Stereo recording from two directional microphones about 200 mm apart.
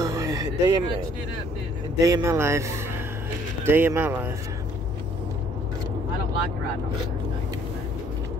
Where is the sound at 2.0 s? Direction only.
15° right (ahead or behind).